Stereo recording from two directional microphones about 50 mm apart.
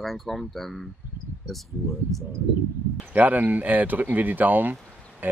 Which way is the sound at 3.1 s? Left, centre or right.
Right.